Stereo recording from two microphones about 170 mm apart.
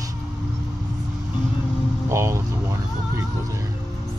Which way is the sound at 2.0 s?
15° right (ahead or behind).